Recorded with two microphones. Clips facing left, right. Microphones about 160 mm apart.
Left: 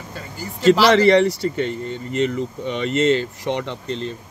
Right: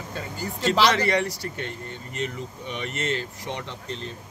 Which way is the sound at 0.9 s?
80° left.